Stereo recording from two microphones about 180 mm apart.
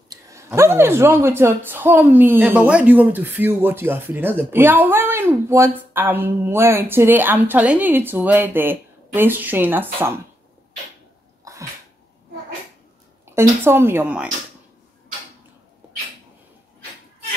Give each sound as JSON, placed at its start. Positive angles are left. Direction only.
{"t": 0.1, "sound": "a woman's voice", "side_deg": -15}
{"t": 11.5, "sound": "sneeze", "side_deg": -15}
{"t": 13.2, "sound": "a woman's voice", "side_deg": -15}